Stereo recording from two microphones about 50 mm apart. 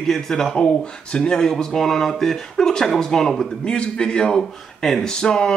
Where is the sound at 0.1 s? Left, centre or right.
Centre.